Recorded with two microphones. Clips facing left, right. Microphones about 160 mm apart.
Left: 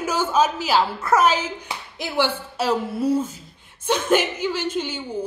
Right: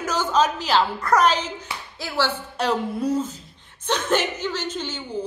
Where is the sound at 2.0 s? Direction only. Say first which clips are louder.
Left 2 dB; 15° left (ahead or behind).